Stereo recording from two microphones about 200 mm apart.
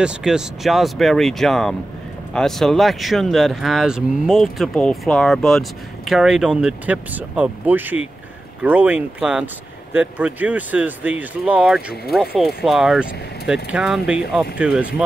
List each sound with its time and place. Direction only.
0.0 s speech: 5° right (ahead or behind)